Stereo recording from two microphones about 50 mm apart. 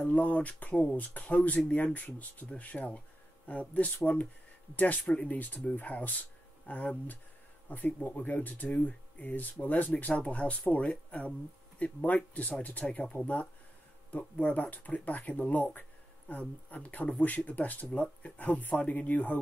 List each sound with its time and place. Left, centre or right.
0.0 s speech: left